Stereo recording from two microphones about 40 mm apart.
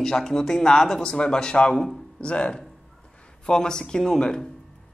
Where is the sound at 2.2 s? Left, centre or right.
Left.